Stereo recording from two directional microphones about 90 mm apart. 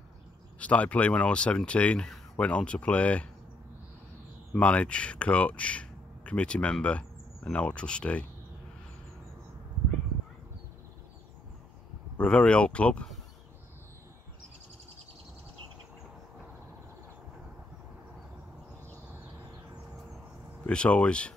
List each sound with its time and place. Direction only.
0.6 s speech: 15° left (ahead or behind)
4.6 s speech: 15° left (ahead or behind)
12.2 s speech: 10° left (ahead or behind)
20.6 s speech: 15° left (ahead or behind)